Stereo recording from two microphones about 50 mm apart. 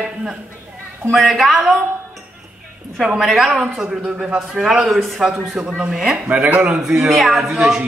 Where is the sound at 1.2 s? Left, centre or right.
Centre.